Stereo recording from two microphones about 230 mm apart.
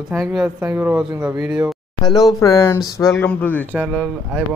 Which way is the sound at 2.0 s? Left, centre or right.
Centre.